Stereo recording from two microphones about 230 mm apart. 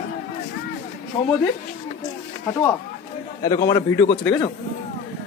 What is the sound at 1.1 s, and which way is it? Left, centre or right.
Speech, left.